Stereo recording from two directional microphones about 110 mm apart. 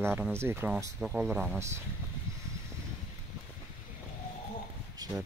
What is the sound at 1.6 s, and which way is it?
Speech, 25° right (ahead or behind).